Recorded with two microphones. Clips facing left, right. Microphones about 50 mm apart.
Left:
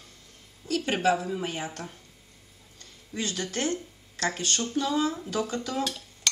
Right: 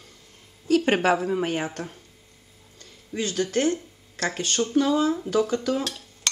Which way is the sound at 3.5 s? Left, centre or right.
Right.